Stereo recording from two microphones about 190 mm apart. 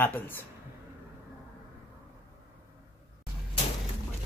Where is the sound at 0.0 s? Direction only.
10° left (ahead or behind).